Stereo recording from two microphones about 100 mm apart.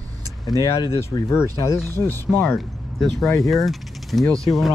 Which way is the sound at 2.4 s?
Centre (ahead or behind).